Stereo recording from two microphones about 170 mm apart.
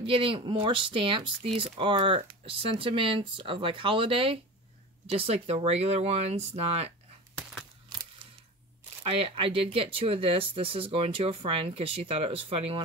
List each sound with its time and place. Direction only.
0.0 s speech: 30° right (ahead or behind)
9.0 s speech: 35° right (ahead or behind)